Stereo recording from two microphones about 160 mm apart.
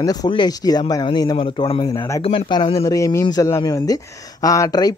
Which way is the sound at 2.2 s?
35° left (ahead or behind).